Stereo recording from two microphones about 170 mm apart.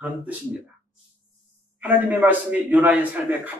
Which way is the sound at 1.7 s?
5° right (ahead or behind).